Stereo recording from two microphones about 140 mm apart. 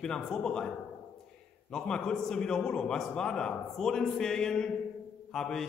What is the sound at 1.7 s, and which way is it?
A man's voice, 5° left (ahead or behind).